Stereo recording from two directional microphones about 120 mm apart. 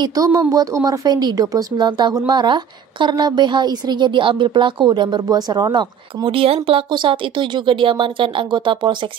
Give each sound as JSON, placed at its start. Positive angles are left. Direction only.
{"t": 0.0, "sound": "a woman's voice", "side_deg": -30}